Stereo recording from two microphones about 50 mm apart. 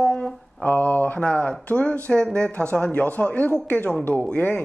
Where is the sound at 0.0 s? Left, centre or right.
Centre.